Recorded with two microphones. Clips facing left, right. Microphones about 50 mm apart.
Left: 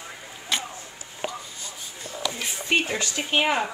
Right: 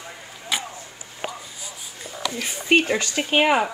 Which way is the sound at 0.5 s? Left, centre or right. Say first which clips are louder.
Right 1 dB; centre.